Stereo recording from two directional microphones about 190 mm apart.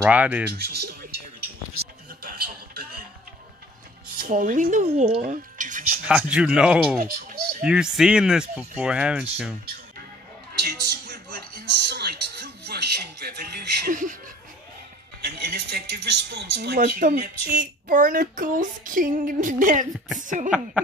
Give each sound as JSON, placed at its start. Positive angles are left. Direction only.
{"t": 0.0, "sound": "speech", "side_deg": -5}
{"t": 0.6, "sound": "a sound", "side_deg": -55}
{"t": 1.8, "sound": "music", "side_deg": -55}
{"t": 4.2, "sound": "speech", "side_deg": -45}
{"t": 4.8, "sound": "speech", "side_deg": -30}
{"t": 5.2, "sound": "music", "side_deg": -45}
{"t": 6.0, "sound": "speech", "side_deg": -5}
{"t": 10.6, "sound": "music", "side_deg": -55}
{"t": 15.2, "sound": "speech", "side_deg": -60}
{"t": 20.4, "sound": "speech", "side_deg": -5}